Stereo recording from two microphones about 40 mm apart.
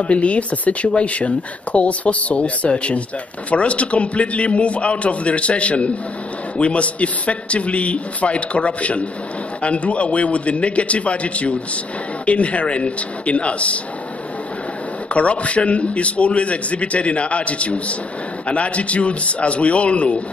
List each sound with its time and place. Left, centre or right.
0.0 s speech: left
15.1 s speech: left